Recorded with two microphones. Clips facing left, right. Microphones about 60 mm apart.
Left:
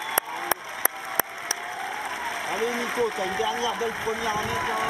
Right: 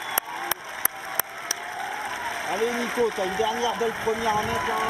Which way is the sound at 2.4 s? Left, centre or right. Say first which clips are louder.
Right 2 dB; centre.